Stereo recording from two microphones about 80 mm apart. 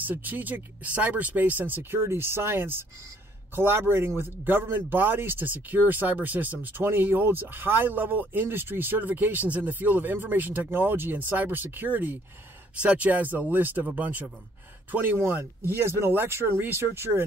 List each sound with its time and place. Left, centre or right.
0.0 s speech: right